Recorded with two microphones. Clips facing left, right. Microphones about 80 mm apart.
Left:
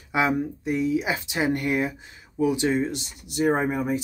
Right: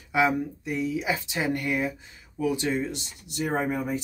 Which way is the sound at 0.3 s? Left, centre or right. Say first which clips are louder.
Left 3 dB; left.